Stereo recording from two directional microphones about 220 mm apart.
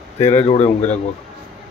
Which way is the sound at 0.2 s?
30° left (ahead or behind).